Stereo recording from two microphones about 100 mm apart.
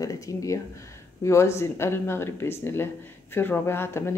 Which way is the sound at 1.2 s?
30° left (ahead or behind).